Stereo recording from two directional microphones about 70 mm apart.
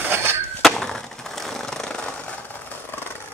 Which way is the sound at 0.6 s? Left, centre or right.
Centre.